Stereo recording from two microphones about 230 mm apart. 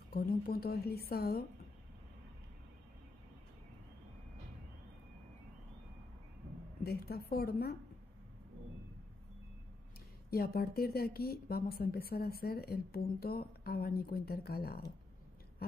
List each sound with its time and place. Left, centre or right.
0.1 s a woman's voice: left
6.8 s a woman's voice: left
10.3 s a woman's voice: left